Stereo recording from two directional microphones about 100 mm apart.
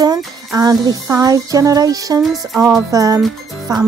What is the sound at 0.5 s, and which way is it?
Music, 35° right (ahead or behind).